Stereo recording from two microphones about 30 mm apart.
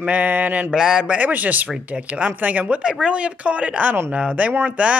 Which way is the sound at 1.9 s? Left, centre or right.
Right.